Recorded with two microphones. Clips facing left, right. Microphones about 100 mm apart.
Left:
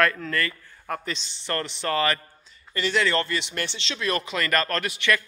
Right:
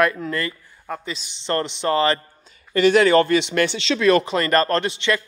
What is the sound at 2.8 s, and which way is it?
Speech, 55° right (ahead or behind).